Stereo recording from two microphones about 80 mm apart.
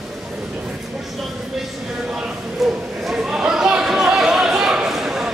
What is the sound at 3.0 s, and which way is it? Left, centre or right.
Chatter, centre.